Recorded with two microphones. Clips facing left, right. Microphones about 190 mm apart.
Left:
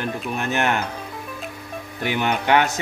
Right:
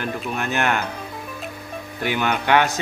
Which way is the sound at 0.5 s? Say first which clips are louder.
Even; 20° left (ahead or behind).